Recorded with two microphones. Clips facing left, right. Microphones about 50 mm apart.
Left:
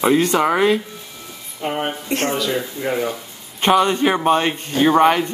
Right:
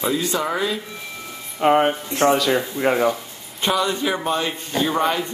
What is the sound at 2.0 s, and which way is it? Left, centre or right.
Speech, left.